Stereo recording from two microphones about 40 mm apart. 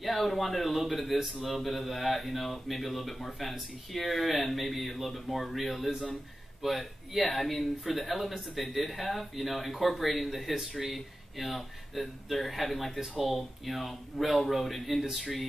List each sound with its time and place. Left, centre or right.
0.0 s a man's voice: centre